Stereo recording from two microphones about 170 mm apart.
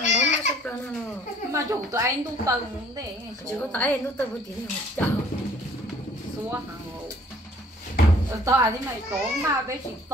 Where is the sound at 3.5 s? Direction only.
10° left (ahead or behind).